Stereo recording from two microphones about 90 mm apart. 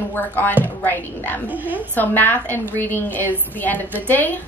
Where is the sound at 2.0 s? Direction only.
20° left (ahead or behind).